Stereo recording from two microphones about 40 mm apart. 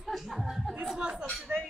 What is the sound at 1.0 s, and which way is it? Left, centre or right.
Chatter, right.